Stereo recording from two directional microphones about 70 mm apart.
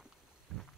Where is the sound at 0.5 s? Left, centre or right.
Centre.